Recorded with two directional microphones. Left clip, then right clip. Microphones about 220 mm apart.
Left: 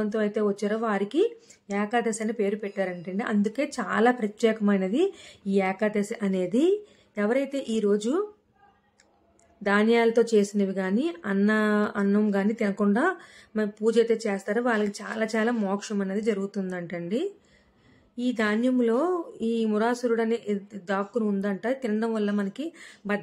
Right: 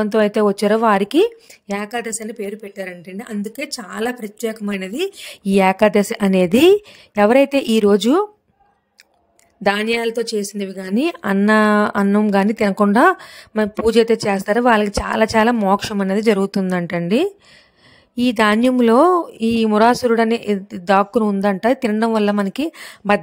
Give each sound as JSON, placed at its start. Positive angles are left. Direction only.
{"t": 0.0, "sound": "a woman's voice", "side_deg": -45}
{"t": 2.3, "sound": "speech", "side_deg": 0}
{"t": 4.7, "sound": "a woman's voice", "side_deg": -45}
{"t": 9.6, "sound": "a woman's voice", "side_deg": -45}